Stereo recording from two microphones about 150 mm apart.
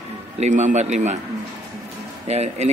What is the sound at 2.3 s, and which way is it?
Speech, 45° right (ahead or behind).